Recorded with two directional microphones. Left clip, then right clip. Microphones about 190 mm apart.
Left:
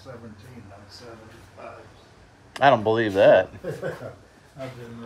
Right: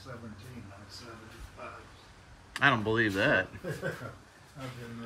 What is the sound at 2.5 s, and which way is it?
Speech, 20° right (ahead or behind).